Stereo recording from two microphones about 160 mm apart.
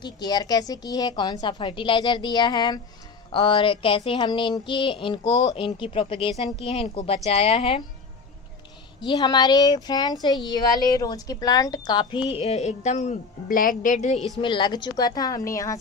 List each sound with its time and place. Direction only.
0.0 s speech: 25° left (ahead or behind)
3.3 s a sound: 35° left (ahead or behind)
9.0 s speech: 25° left (ahead or behind); by 14.1 s 55° left (ahead or behind)
14.1 s a woman's voice: centre (ahead or behind)
14.4 s speech: 30° left (ahead or behind)